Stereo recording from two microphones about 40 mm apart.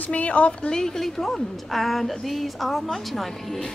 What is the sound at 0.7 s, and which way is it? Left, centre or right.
A woman's voice, centre.